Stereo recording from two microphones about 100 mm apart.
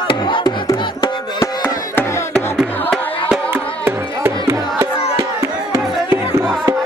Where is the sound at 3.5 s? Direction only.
20° right (ahead or behind).